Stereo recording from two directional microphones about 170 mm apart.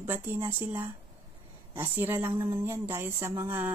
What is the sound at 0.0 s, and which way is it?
Speech, 10° right (ahead or behind).